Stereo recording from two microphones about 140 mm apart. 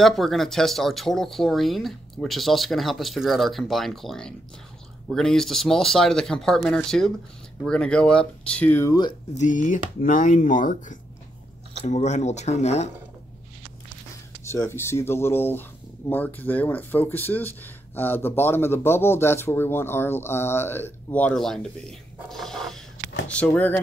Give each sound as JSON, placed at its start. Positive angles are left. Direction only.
{"t": 0.0, "sound": "speech", "side_deg": 0}
{"t": 9.4, "sound": "speech", "side_deg": 65}
{"t": 11.8, "sound": "speech", "side_deg": 55}
{"t": 14.4, "sound": "speech", "side_deg": 20}